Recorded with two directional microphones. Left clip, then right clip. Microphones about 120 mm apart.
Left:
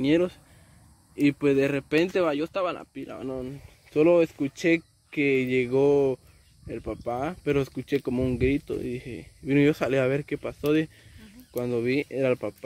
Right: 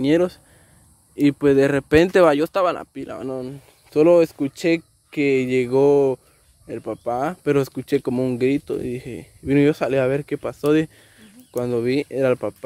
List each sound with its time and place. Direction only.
0.0 s speech: 30° right (ahead or behind)
9.7 s speech: 15° right (ahead or behind)
10.2 s speech: 30° right (ahead or behind)